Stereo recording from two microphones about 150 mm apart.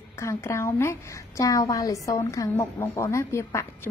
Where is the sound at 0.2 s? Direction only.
20° left (ahead or behind).